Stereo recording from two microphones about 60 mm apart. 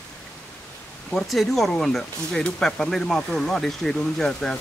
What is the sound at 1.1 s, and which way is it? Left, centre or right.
Speech, centre.